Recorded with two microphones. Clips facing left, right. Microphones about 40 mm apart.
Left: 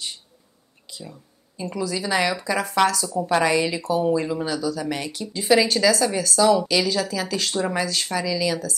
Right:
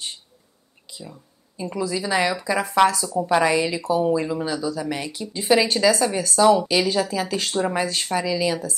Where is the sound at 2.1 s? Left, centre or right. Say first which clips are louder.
Even; right.